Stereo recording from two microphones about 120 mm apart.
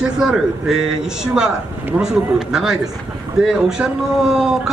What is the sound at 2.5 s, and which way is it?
Speech, 5° right (ahead or behind).